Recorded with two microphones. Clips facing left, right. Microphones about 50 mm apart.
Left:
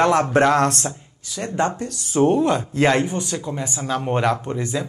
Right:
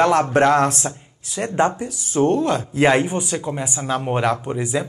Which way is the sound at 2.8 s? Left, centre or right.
Centre.